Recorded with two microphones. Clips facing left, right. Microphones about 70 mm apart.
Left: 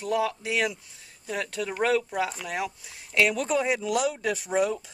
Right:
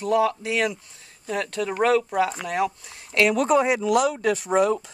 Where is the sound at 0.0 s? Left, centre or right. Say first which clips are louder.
Right 5 dB; centre.